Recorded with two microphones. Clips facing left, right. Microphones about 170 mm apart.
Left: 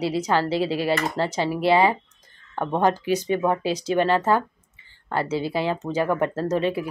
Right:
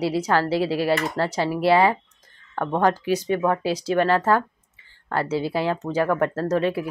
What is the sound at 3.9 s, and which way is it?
Speech, 25° left (ahead or behind).